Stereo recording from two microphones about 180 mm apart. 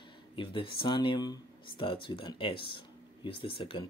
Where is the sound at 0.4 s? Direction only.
30° left (ahead or behind).